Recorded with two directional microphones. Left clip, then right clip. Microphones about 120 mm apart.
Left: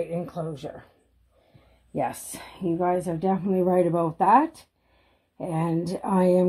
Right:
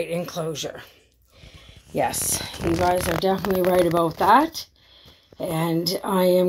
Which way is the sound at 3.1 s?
15° left (ahead or behind).